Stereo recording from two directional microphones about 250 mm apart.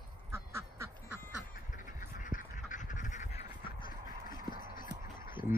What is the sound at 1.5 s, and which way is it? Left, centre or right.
Duck, left.